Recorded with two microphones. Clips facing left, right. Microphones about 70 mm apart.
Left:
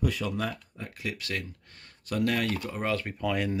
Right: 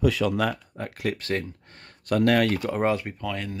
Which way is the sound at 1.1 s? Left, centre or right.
Right.